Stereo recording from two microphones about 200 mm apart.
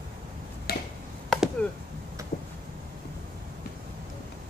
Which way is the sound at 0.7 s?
50° left (ahead or behind).